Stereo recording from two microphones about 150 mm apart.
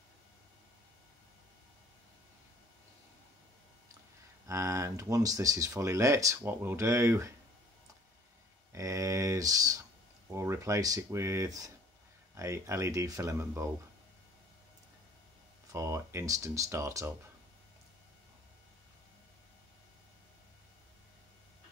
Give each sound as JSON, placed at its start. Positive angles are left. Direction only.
{"t": 4.5, "sound": "speech", "side_deg": -20}
{"t": 8.7, "sound": "a sound", "side_deg": -20}
{"t": 10.3, "sound": "speech", "side_deg": -20}
{"t": 15.7, "sound": "speech", "side_deg": -20}